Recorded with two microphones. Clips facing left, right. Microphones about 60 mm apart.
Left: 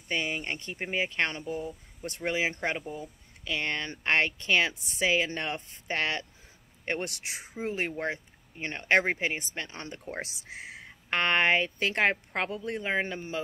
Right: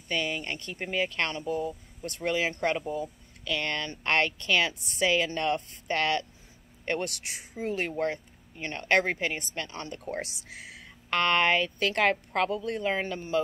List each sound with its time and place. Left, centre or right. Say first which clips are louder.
0.1 s speech: right 1 dB; left